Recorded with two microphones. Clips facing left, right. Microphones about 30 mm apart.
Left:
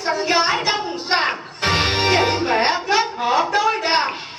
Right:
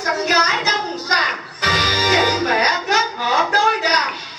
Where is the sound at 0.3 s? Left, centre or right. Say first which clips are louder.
Right 4 dB; centre.